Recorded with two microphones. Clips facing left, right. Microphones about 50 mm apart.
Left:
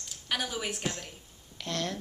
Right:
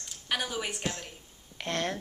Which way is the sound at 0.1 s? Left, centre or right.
Centre.